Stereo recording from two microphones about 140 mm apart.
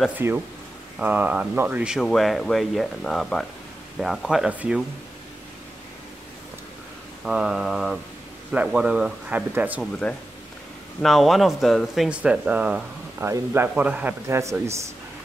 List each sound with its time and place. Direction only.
0.2 s a man's voice: 15° right (ahead or behind)
7.2 s a man's voice: 5° right (ahead or behind)
9.8 s a man's voice: 10° left (ahead or behind); by 14.8 s 20° right (ahead or behind)